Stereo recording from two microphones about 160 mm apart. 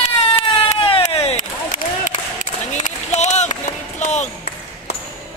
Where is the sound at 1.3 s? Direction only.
50° left (ahead or behind).